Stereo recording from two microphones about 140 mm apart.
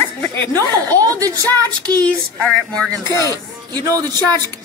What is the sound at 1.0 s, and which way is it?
A woman's voice, 25° right (ahead or behind).